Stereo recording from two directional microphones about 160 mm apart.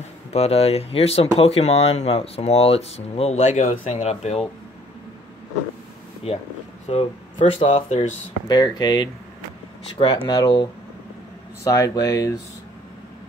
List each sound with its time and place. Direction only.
0.3 s speech: 40° left (ahead or behind)
6.2 s speech: 40° left (ahead or behind)
8.5 s speech: 25° left (ahead or behind)
10.2 s speech: 25° left (ahead or behind)